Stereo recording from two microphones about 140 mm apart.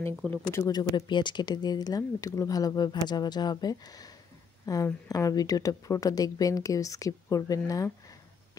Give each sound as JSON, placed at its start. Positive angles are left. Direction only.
{"t": 0.3, "sound": "speech", "side_deg": 15}
{"t": 0.7, "sound": "speech", "side_deg": 30}